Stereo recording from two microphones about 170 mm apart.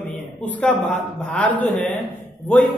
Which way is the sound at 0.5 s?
10° left (ahead or behind).